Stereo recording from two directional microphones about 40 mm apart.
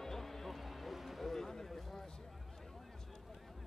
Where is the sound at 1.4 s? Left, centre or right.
Centre.